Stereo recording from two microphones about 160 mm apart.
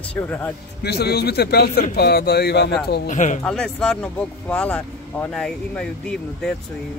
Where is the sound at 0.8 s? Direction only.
90° left.